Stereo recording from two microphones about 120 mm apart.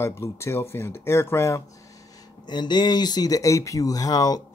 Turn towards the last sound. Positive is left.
turn(degrees=30)  # may be behind; listen again after turning